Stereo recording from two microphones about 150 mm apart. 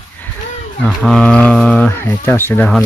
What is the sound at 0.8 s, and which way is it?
Speech, 5° left (ahead or behind).